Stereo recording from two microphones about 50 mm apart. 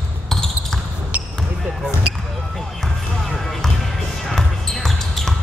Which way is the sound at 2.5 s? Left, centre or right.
Centre.